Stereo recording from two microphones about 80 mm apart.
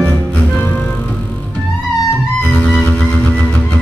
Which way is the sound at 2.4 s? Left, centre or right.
Centre.